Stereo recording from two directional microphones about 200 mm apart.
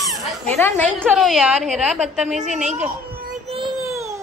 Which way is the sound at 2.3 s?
35° right (ahead or behind).